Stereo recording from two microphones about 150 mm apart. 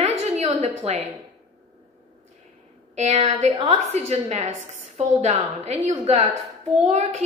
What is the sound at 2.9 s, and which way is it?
A woman's voice, 45° right (ahead or behind).